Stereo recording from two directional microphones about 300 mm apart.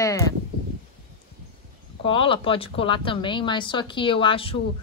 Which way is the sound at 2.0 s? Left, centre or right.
Centre.